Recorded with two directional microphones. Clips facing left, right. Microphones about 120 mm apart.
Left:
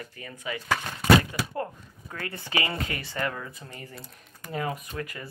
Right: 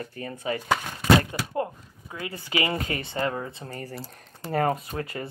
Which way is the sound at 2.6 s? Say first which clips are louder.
Right 4 dB; 25° right (ahead or behind).